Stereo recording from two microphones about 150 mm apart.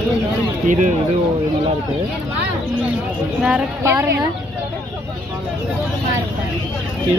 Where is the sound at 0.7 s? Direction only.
60° right (ahead or behind).